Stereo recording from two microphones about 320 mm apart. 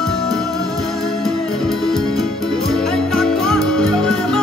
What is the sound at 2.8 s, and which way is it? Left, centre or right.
Music, centre.